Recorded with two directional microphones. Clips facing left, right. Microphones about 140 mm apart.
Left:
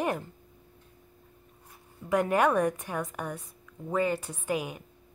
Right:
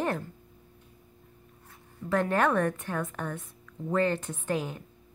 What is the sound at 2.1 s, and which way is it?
A woman's voice, 10° left (ahead or behind).